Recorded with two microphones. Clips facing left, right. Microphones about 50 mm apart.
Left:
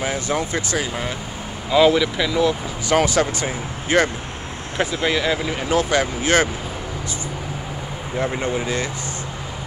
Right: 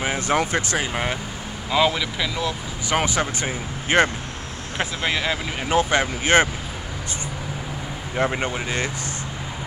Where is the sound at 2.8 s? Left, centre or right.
Centre.